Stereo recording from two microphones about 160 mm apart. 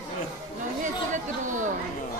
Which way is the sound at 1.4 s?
55° right (ahead or behind).